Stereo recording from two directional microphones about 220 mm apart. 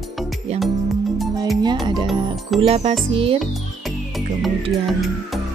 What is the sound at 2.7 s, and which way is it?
Speech, 25° right (ahead or behind).